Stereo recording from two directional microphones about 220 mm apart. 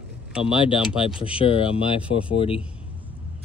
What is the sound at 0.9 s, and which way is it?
Speech, 25° left (ahead or behind).